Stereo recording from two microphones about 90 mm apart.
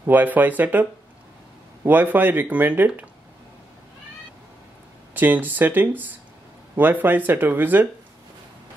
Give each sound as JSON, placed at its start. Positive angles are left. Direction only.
{"t": 0.0, "sound": "speech", "side_deg": -20}
{"t": 1.9, "sound": "speech", "side_deg": -20}
{"t": 5.1, "sound": "speech", "side_deg": -20}